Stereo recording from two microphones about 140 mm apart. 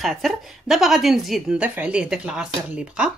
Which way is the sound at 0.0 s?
Centre (ahead or behind).